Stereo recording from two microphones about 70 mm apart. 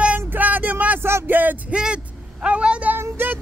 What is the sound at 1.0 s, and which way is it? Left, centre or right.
Speech, right.